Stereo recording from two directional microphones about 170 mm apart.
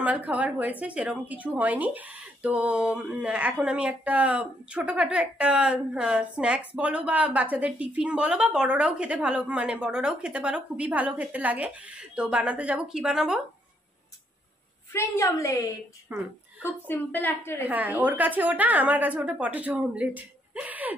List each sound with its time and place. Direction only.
0.0 s a woman's voice: 10° right (ahead or behind)
14.9 s a woman's voice: 15° left (ahead or behind)
16.1 s a woman's voice: 10° right (ahead or behind)
16.6 s a woman's voice: 10° left (ahead or behind)
17.6 s a woman's voice: 10° right (ahead or behind)